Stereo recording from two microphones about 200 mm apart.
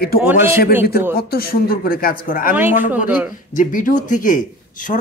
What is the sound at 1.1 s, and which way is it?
Speech, 50° left (ahead or behind).